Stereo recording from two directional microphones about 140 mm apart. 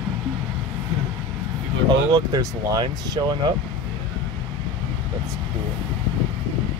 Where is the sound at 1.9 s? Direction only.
30° right (ahead or behind).